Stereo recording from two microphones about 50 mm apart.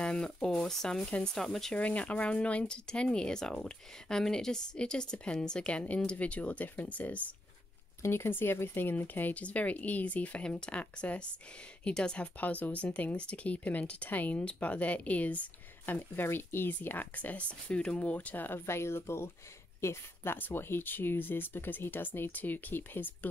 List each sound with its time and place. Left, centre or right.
0.0 s speech: centre
1.8 s speech: left
8.0 s speech: left; by 12.3 s centre
12.4 s speech: left
15.8 s speech: left
18.7 s a woman's voice: left
20.3 s speech: left